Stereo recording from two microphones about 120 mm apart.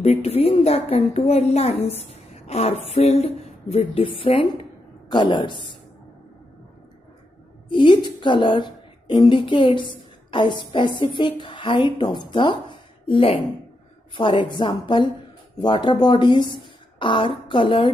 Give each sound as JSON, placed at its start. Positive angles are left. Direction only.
{"t": 0.0, "sound": "a woman's voice", "side_deg": 60}
{"t": 2.0, "sound": "a sound", "side_deg": 65}
{"t": 2.9, "sound": "a woman's voice", "side_deg": 60}
{"t": 7.7, "sound": "a woman's voice", "side_deg": 40}